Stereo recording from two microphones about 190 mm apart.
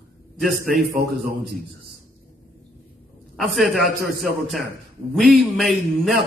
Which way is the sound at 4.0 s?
50° right (ahead or behind).